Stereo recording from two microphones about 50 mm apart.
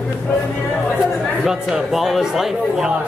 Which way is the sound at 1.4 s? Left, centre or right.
Centre.